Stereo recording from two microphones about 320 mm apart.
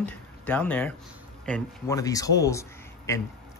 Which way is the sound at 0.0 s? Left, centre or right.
Centre.